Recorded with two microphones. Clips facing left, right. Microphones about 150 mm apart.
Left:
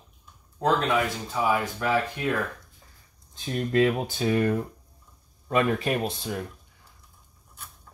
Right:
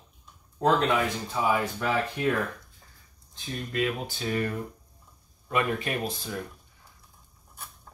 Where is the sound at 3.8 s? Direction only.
45° left (ahead or behind).